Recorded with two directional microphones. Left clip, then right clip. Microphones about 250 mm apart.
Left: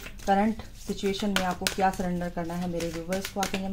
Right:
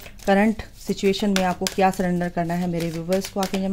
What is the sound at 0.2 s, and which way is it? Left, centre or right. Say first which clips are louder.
Speech: right 5 dB; right.